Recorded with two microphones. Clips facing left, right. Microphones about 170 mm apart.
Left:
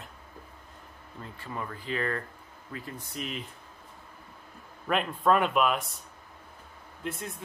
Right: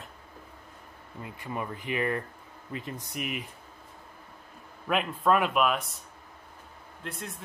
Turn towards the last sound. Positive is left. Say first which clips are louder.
# left 3 dB
turn(degrees=0)  # may be behind; listen again after turning